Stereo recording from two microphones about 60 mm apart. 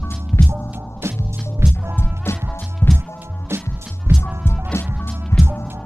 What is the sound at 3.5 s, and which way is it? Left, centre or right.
Music, right.